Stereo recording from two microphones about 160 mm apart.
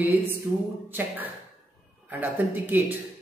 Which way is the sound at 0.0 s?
10° right (ahead or behind).